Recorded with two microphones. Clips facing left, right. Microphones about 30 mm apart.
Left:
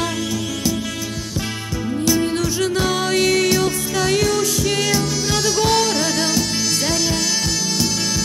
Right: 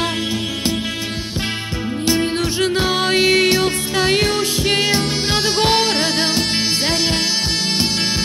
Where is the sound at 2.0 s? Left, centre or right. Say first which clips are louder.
Right 1 dB; right.